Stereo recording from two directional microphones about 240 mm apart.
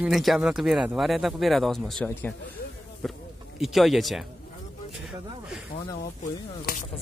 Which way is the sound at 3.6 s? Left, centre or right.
Centre.